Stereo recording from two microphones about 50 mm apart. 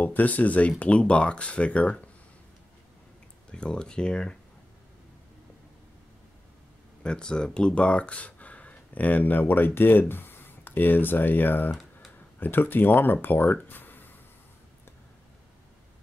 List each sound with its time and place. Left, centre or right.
0.0 s speech: left
3.4 s speech: centre
7.0 s speech: centre; by 11.7 s left
11.7 s typing: centre
12.4 s speech: left